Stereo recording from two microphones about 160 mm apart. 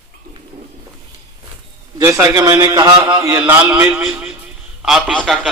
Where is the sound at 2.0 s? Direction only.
15° right (ahead or behind).